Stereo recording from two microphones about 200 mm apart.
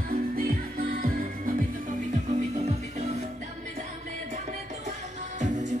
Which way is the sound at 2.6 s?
35° right (ahead or behind).